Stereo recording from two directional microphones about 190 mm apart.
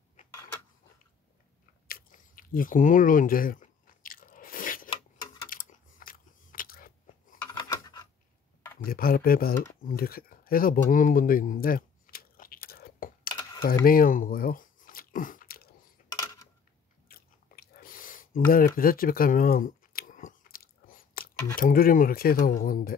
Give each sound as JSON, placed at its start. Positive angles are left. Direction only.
{"t": 0.3, "sound": "a sound", "side_deg": 15}
{"t": 1.9, "sound": "chewing", "side_deg": 50}
{"t": 5.5, "sound": "biting", "side_deg": 45}
{"t": 7.5, "sound": "a sound", "side_deg": 20}
{"t": 8.8, "sound": "speech", "side_deg": 50}
{"t": 9.8, "sound": "a sound", "side_deg": 50}
{"t": 13.3, "sound": "typing", "side_deg": 20}
{"t": 13.8, "sound": "chewing", "side_deg": 50}
{"t": 16.1, "sound": "a sound", "side_deg": 20}
{"t": 17.1, "sound": "chewing", "side_deg": 50}
{"t": 18.8, "sound": "biting", "side_deg": 50}
{"t": 21.5, "sound": "speech", "side_deg": 50}